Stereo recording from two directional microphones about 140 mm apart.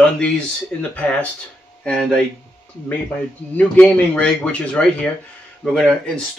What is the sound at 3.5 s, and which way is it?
A man's voice, 10° left (ahead or behind).